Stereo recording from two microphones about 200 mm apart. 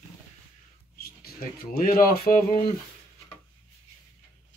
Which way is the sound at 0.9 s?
50° left (ahead or behind).